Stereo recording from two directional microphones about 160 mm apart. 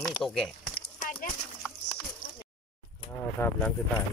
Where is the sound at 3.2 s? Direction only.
10° left (ahead or behind).